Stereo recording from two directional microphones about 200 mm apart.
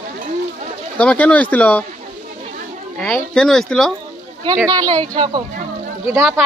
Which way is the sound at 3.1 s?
5° left (ahead or behind).